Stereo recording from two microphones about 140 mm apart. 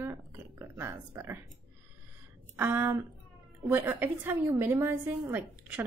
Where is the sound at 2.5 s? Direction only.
15° right (ahead or behind).